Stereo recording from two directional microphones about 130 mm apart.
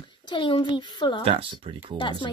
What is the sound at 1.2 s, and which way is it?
Speech, 45° right (ahead or behind).